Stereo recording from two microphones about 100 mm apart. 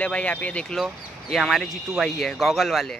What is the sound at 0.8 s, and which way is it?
Speech, centre (ahead or behind).